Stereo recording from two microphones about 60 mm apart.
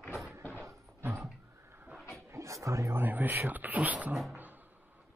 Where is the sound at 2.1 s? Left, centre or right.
Right.